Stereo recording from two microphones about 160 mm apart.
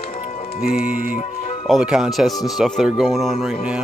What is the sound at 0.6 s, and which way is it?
Music, 65° left (ahead or behind).